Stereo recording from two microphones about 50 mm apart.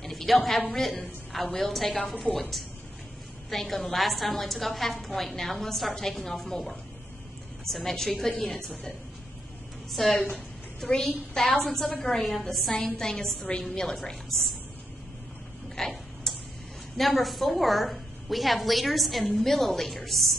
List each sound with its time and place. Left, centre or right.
0.0 s a woman's voice: centre
3.4 s a woman's voice: centre
12.7 s a woman's voice: centre
15.8 s a woman's voice: centre
16.3 s tick-tock: centre
16.9 s a woman's voice: centre